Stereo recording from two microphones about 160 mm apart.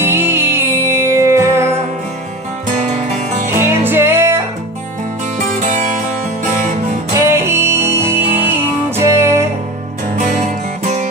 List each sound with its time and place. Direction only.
0.0 s music: 15° right (ahead or behind)
2.8 s music: 45° right (ahead or behind)
3.5 s music: 15° right (ahead or behind)
5.5 s music: 50° right (ahead or behind)
7.2 s music: 15° right (ahead or behind)
10.1 s music: 45° right (ahead or behind)